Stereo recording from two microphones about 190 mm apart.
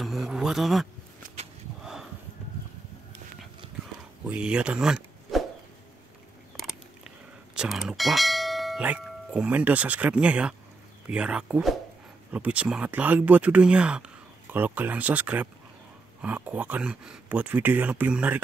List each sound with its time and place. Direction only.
0.0 s speech: centre (ahead or behind)
1.2 s a sound: 35° right (ahead or behind)
4.3 s speech: 5° right (ahead or behind)
7.5 s speech: centre (ahead or behind)